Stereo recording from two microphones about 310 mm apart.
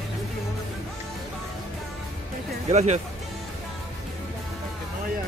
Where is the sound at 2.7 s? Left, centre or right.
Right.